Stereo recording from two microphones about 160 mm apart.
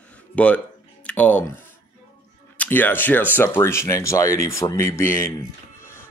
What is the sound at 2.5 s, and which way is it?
Speech, 10° left (ahead or behind).